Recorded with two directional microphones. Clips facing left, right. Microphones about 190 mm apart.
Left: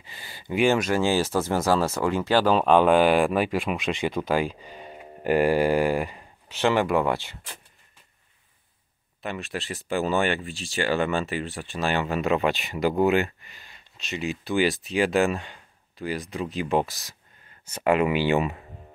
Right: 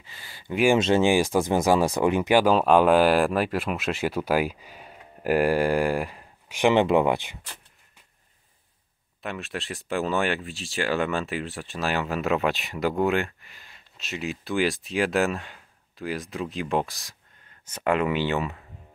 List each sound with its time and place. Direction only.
0.0 s a sound: 20° left (ahead or behind)
0.7 s speech: 25° right (ahead or behind)
2.5 s speech: 5° right (ahead or behind)
6.5 s speech: 15° right (ahead or behind)
9.2 s speech: centre (ahead or behind)